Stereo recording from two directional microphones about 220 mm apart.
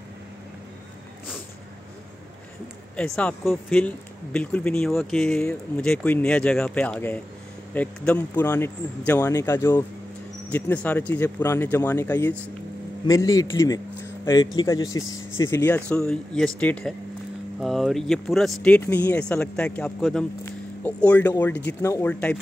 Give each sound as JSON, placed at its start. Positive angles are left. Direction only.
{"t": 3.0, "sound": "speech", "side_deg": 5}